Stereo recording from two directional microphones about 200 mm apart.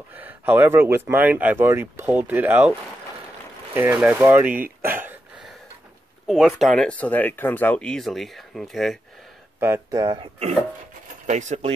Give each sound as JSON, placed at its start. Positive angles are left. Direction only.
{"t": 0.1, "sound": "speech", "side_deg": -10}
{"t": 3.7, "sound": "speech", "side_deg": -10}
{"t": 4.8, "sound": "a sound", "side_deg": -10}
{"t": 6.2, "sound": "speech", "side_deg": 0}
{"t": 9.6, "sound": "speech", "side_deg": -15}
{"t": 11.2, "sound": "speech", "side_deg": -35}